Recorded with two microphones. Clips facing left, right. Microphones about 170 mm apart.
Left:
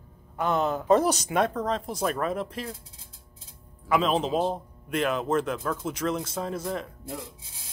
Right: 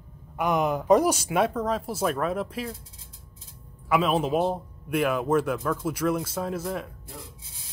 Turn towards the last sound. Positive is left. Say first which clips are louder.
# right 1 dB
turn(degrees=-5)  # may be behind; listen again after turning